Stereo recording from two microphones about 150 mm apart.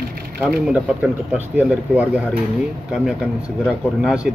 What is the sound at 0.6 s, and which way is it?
Speech, 10° right (ahead or behind).